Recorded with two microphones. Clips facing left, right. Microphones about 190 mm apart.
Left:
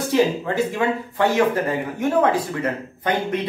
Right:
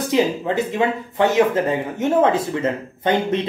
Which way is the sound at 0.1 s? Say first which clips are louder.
Even; 20° right (ahead or behind).